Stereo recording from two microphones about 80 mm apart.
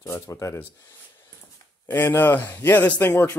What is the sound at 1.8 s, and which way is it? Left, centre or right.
A man's voice, left.